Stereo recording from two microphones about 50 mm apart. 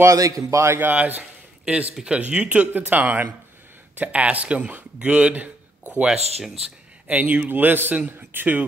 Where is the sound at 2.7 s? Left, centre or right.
Right.